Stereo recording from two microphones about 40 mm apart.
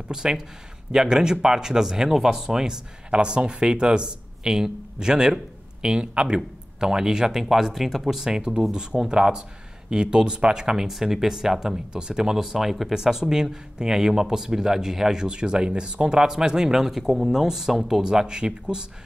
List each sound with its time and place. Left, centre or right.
0.1 s speech: centre
10.9 s speech: centre
17.3 s speech: centre